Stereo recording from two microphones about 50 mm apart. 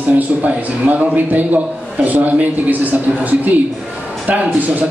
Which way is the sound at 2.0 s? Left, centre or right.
Right.